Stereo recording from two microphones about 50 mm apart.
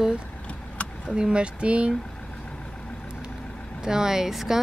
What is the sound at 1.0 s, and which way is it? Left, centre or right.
Speech, centre.